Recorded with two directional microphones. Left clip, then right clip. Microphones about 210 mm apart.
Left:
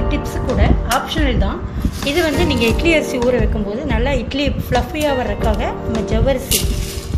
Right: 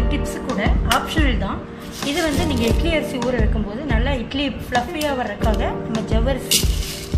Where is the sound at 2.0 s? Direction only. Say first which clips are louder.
Left 4 dB; 30° left (ahead or behind).